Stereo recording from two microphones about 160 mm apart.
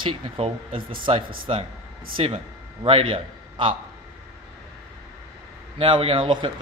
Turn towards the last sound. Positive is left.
turn(degrees=-30)  # may be behind; listen again after turning